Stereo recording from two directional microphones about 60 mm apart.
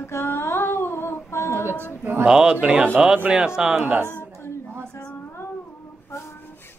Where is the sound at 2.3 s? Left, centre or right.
Centre.